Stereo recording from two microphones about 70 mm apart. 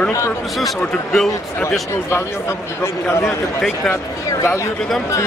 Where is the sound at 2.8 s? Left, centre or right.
Left.